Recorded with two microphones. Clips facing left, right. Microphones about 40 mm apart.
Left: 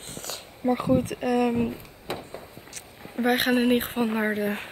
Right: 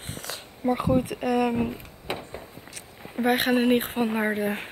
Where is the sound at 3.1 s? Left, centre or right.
Centre.